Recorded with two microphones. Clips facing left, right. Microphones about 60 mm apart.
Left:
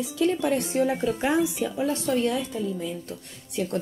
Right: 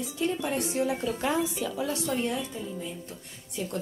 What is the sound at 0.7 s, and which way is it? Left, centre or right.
Speech, left.